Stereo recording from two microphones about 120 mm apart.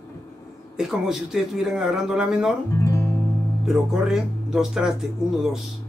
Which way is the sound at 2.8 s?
20° left (ahead or behind).